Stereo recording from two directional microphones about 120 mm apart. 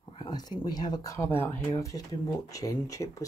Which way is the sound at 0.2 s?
35° left (ahead or behind).